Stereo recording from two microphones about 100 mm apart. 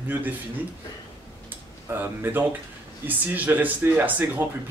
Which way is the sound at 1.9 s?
20° right (ahead or behind).